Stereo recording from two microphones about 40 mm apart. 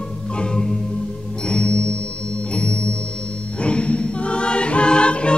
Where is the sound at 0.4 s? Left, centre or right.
Left.